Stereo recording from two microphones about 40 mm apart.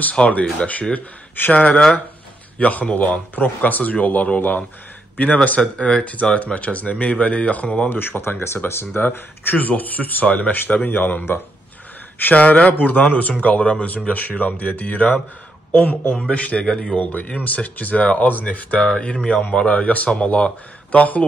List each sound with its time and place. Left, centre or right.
0.1 s a man's voice: left
5.8 s a man's voice: left
8.3 s speech: left
8.6 s speech: left
9.0 s a man's voice: left
13.6 s speech: left
13.8 s a man's voice: left
16.6 s speech: centre
17.0 s a man's voice: left
18.9 s speech: left
20.9 s a man's voice: left